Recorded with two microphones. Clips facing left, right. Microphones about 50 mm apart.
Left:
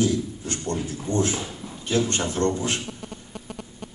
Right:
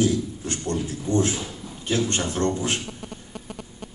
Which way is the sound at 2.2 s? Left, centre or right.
Right.